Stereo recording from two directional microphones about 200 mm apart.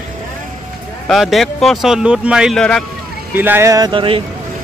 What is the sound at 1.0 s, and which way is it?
Speech, centre (ahead or behind).